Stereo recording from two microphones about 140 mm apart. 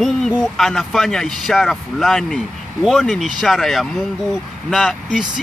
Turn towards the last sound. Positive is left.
turn(degrees=0)  # may be behind; listen again after turning